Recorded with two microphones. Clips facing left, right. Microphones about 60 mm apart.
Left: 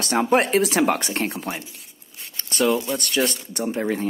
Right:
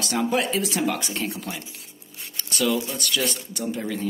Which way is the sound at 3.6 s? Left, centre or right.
Left.